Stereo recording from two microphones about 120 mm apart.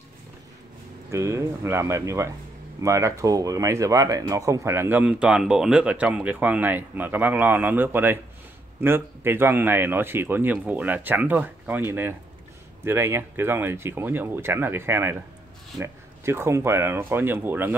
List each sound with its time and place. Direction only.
1.1 s speech: 25° right (ahead or behind)